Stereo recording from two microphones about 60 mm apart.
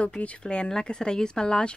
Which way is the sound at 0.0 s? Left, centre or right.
Left.